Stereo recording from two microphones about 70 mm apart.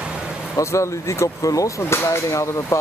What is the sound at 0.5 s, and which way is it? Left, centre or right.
Speech, left.